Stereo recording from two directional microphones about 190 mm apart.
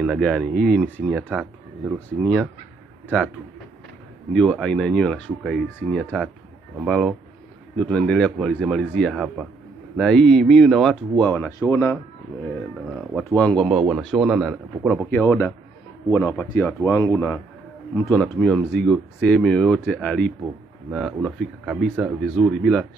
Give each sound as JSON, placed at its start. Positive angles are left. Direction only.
{"t": 0.0, "sound": "speech", "side_deg": 0}
{"t": 1.1, "sound": "speech", "side_deg": -5}
{"t": 2.0, "sound": "speech", "side_deg": 5}
{"t": 4.3, "sound": "a man's voice", "side_deg": 5}
{"t": 12.9, "sound": "speech", "side_deg": 0}
{"t": 15.0, "sound": "a man's voice", "side_deg": 10}
{"t": 17.1, "sound": "speech", "side_deg": 5}